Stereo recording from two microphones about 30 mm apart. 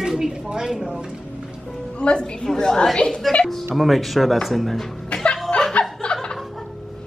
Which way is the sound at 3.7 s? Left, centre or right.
Centre.